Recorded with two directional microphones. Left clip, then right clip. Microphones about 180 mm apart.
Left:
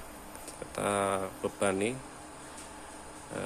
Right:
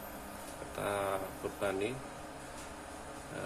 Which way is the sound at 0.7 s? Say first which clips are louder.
Left 5 dB; 55° left (ahead or behind).